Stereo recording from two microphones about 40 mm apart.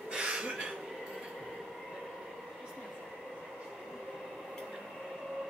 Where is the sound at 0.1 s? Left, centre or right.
Right.